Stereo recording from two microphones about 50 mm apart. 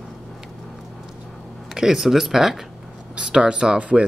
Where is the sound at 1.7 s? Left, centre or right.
Centre.